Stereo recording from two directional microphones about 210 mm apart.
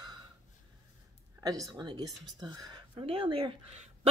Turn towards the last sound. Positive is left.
turn(degrees=-30)  # may be behind; listen again after turning